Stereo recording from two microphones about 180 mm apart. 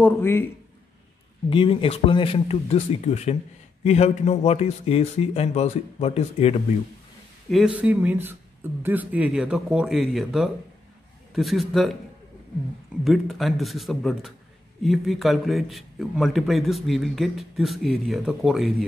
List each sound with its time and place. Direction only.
0.0 s speech: 15° left (ahead or behind)
1.5 s speech: 30° left (ahead or behind)
7.5 s speech: 5° right (ahead or behind)
13.0 s speech: centre (ahead or behind)